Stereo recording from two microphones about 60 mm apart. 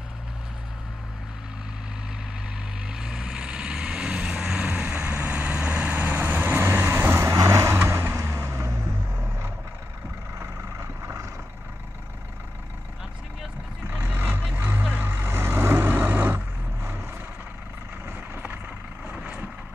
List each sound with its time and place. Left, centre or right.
2.9 s vehicle: centre; by 7.3 s right
7.3 s vehicle: right
7.7 s vehicle: right
11.0 s vehicle: right
13.8 s vehicle: right
14.5 s a sound: right
15.0 s vehicle: right
19.1 s vehicle: centre